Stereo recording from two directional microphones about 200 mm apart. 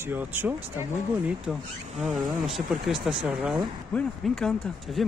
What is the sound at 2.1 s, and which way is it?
Speech, centre (ahead or behind).